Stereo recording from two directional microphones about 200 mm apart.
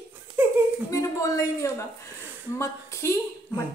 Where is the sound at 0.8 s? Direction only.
15° left (ahead or behind).